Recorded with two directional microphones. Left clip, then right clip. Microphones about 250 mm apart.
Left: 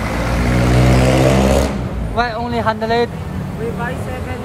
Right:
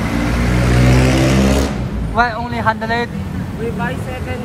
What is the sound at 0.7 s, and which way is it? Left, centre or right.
Vehicle, left.